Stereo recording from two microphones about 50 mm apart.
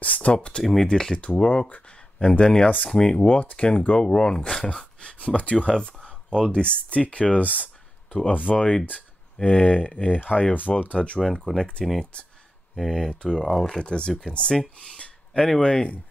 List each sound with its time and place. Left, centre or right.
0.0 s speech: left
3.3 s speech: left
4.1 s speech: centre
5.0 s speech: left
5.7 s speech: centre
11.3 s speech: centre
12.7 s speech: centre
13.1 s speech: centre
13.4 s speech: centre
13.9 s speech: left